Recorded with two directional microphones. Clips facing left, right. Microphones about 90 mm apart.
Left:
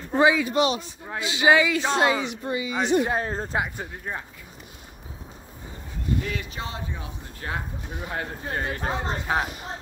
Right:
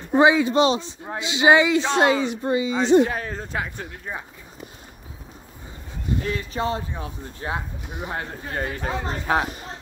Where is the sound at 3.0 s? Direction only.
30° left (ahead or behind).